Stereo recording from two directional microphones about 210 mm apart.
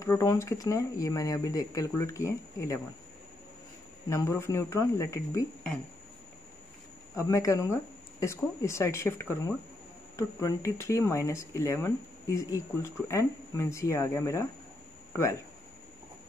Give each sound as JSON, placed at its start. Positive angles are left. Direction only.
{"t": 0.0, "sound": "speech", "side_deg": 15}
{"t": 4.1, "sound": "speech", "side_deg": 15}
{"t": 7.2, "sound": "speech", "side_deg": 15}